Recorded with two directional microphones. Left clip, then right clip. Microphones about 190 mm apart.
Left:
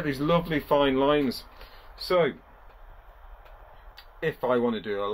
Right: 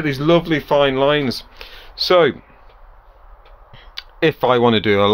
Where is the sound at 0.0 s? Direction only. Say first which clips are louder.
Right 9 dB; 35° right (ahead or behind); by 2.3 s 60° right (ahead or behind).